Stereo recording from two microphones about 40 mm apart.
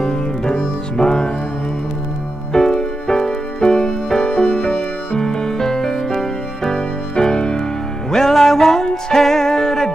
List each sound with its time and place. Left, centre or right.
0.0 s music: centre
2.5 s music: centre
8.1 s music: centre